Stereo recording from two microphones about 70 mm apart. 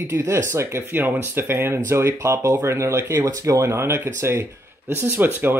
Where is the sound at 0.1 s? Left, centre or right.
Right.